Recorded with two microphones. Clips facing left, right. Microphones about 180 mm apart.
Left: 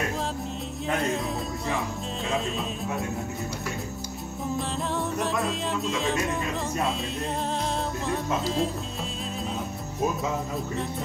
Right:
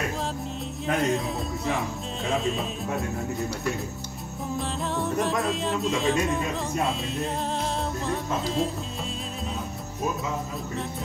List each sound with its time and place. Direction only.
0.8 s music: centre (ahead or behind)
4.5 s music: centre (ahead or behind)